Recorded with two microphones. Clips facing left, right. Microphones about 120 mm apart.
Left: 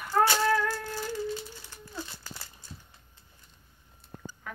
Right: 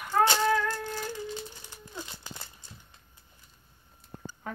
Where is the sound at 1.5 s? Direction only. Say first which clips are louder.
Left 1 dB; 20° right (ahead or behind).